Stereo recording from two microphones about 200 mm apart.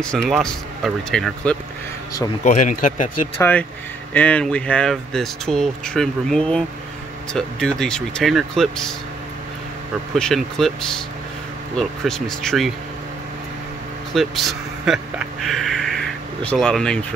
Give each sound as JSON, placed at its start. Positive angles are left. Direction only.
{"t": 0.0, "sound": "speech", "side_deg": 5}
{"t": 2.4, "sound": "speech", "side_deg": 40}
{"t": 4.1, "sound": "speech", "side_deg": 5}
{"t": 10.1, "sound": "speech", "side_deg": 0}
{"t": 14.1, "sound": "speech", "side_deg": 0}